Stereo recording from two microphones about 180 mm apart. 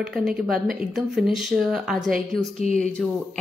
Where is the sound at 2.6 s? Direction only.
40° left (ahead or behind).